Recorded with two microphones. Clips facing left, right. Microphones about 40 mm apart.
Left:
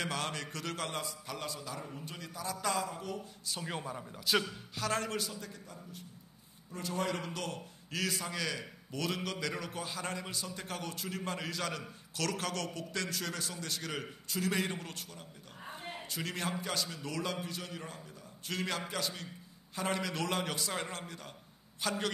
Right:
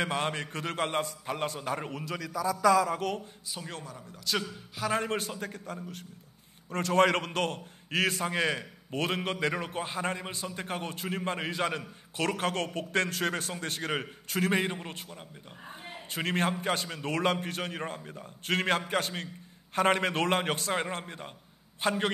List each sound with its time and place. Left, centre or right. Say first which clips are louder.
0.0 s a man's voice: right 6 dB; right
2.9 s speech: right 10 dB; right
3.6 s a man's voice: left 2 dB; centre
4.7 s a man's voice: right 4 dB; centre
5.0 s a man's voice: right 5 dB; right
16.1 s a man's voice: right 9 dB; right